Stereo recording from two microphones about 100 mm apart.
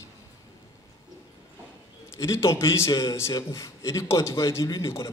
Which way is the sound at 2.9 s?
40° left (ahead or behind).